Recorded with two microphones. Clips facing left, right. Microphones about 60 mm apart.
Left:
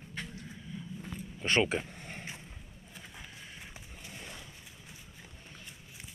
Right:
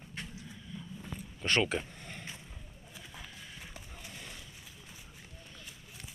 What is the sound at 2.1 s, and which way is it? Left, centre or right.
Boat, left.